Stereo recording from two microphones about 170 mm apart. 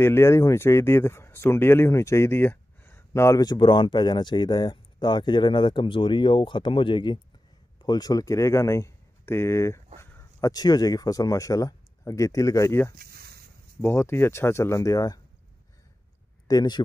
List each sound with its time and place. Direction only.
0.0 s speech: 15° left (ahead or behind)
12.9 s a sound: 60° right (ahead or behind)
13.7 s speech: 15° left (ahead or behind)
16.4 s speech: 25° left (ahead or behind)